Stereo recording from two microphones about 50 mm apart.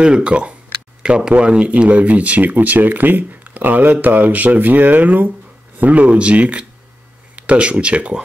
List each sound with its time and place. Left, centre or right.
0.0 s speech: right